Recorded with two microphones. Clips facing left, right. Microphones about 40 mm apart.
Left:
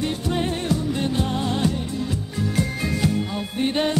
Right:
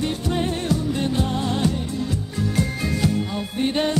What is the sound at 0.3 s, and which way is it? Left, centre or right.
Music, centre.